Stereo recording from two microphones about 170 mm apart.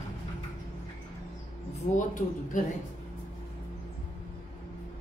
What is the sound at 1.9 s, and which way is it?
Speech, 50° left (ahead or behind).